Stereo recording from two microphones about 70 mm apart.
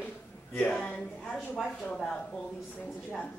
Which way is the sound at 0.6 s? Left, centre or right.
Centre.